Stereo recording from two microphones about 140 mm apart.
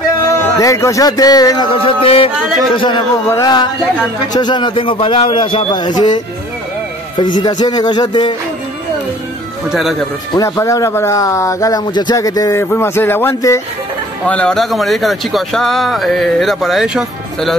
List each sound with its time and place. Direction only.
0.3 s speech: 20° left (ahead or behind)
1.7 s a man's voice: 40° left (ahead or behind)
3.3 s a man's voice: 25° left (ahead or behind)
9.7 s speech: centre (ahead or behind)
10.3 s speech: 25° left (ahead or behind)
14.2 s speech: 5° left (ahead or behind)